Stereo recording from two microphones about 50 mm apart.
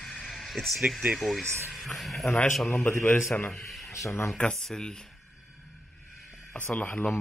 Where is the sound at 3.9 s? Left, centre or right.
Left.